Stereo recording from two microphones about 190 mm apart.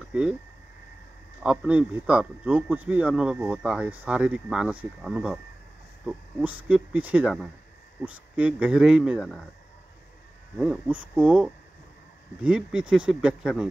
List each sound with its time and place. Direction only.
0.1 s speech: 5° right (ahead or behind)
1.4 s a man's voice: 5° right (ahead or behind)
10.6 s speech: 5° right (ahead or behind)